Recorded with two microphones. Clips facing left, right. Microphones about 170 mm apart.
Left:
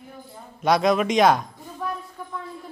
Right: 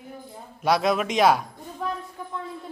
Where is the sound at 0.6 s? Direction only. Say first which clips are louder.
Left 3 dB; 5° right (ahead or behind).